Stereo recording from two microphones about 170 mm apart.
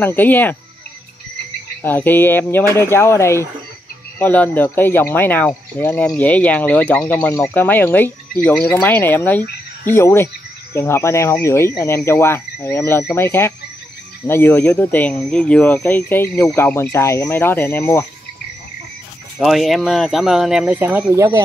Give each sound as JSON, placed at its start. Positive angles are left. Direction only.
{"t": 0.0, "sound": "speech", "side_deg": 10}
{"t": 1.8, "sound": "speech", "side_deg": 10}
{"t": 19.4, "sound": "speech", "side_deg": 0}